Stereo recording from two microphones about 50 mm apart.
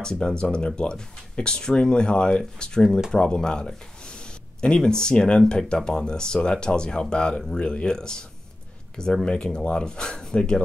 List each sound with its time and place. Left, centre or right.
0.0 s speech: centre